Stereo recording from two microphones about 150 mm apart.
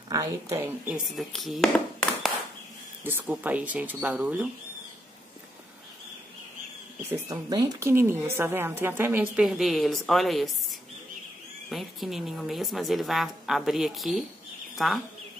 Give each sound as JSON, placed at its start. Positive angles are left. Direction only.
{"t": 0.1, "sound": "a woman's voice", "side_deg": -20}
{"t": 1.1, "sound": "a woman's voice", "side_deg": 0}
{"t": 3.0, "sound": "a woman's voice", "side_deg": -15}
{"t": 7.1, "sound": "speech", "side_deg": -25}
{"t": 7.9, "sound": "a woman's voice", "side_deg": -15}